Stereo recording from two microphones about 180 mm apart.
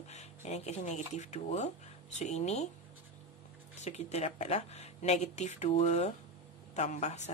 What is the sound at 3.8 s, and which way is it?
A woman's voice, 40° left (ahead or behind).